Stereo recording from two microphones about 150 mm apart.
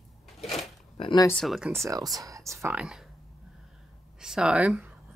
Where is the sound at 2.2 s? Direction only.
20° right (ahead or behind).